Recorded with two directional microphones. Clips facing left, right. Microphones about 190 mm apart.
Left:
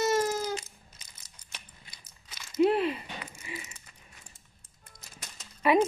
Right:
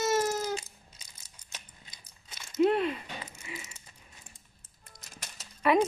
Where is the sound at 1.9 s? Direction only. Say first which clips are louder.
Right 1 dB; 25° right (ahead or behind).